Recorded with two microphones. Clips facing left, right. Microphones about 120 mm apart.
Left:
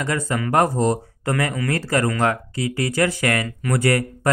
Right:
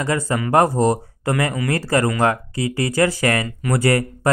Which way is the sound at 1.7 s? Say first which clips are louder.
Right 3 dB; 35° right (ahead or behind).